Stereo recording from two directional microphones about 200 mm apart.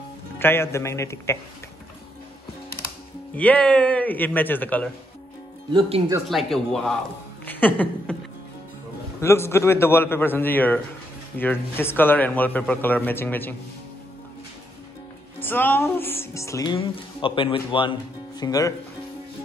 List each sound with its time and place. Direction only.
0.4 s speech: 10° left (ahead or behind)
3.3 s speech: 5° left (ahead or behind)
5.7 s speech: 25° right (ahead or behind)
6.2 s speech: centre (ahead or behind)
7.4 s a sound: 10° left (ahead or behind)
9.2 s speech: 10° left (ahead or behind)
15.4 s speech: 10° left (ahead or behind)